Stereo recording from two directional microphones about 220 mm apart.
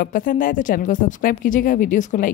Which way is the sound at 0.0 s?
40° left (ahead or behind).